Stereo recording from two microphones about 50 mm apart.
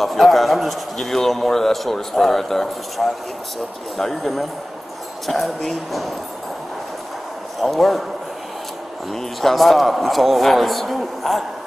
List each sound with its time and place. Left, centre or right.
0.0 s a man's voice: centre
7.6 s a man's voice: centre
9.1 s a man's voice: centre